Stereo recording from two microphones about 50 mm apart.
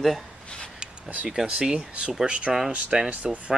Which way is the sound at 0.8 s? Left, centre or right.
Centre.